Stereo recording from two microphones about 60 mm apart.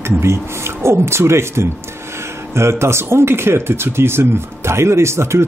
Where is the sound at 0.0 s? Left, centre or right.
Right.